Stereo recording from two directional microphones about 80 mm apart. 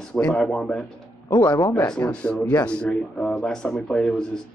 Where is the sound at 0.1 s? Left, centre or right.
Centre.